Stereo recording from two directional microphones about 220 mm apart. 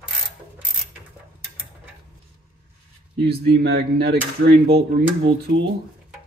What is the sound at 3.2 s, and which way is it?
Speech, 50° right (ahead or behind).